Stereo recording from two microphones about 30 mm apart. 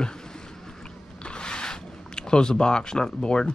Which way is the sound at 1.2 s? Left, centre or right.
Left.